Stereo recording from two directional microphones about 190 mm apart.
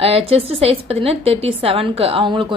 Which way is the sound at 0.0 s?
30° right (ahead or behind).